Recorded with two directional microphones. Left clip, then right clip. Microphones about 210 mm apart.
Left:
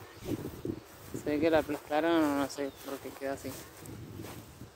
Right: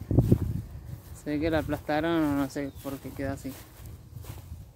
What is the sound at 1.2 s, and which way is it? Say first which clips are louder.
Speech: left 1 dB; 10° right (ahead or behind).